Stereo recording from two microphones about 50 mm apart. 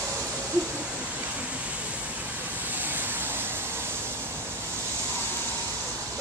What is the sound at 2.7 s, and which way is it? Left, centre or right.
Vehicle, right.